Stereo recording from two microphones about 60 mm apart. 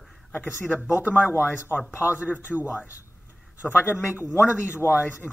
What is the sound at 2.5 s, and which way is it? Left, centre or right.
Speech, centre.